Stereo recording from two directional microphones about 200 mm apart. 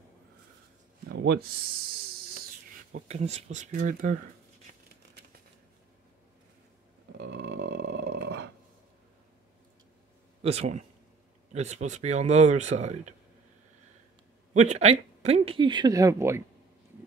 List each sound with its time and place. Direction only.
1.0 s a sound: 55° right (ahead or behind)
2.9 s speech: 30° right (ahead or behind)
7.2 s dog: 60° right (ahead or behind)
10.4 s speech: 30° right (ahead or behind)
14.5 s speech: 35° right (ahead or behind); by 16.4 s 15° right (ahead or behind)